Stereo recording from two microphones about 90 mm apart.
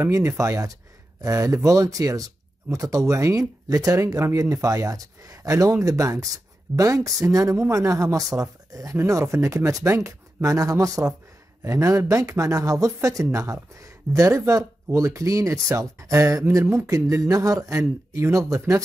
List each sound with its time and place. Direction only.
0.0 s speech: 35° right (ahead or behind)